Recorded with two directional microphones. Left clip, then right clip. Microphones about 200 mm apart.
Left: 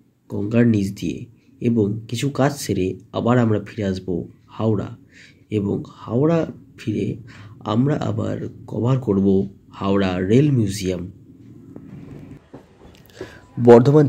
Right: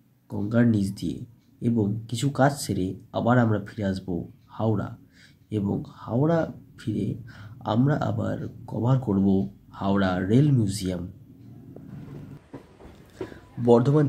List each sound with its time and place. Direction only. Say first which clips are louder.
0.3 s speech: left 5 dB; 5° left (ahead or behind)
13.6 s a man's voice: left 9 dB; 25° left (ahead or behind)